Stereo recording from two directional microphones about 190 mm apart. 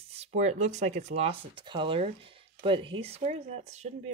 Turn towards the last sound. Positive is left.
turn(degrees=-35)  # may be behind; listen again after turning